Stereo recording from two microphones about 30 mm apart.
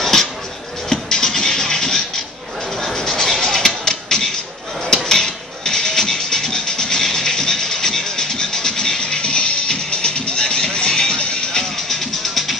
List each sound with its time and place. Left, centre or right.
0.0 s music: centre
0.8 s music: centre
11.9 s music: centre